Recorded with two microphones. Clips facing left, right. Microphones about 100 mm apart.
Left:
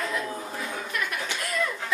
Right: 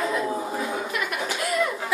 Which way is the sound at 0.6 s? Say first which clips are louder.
Right 4 dB; 10° right (ahead or behind).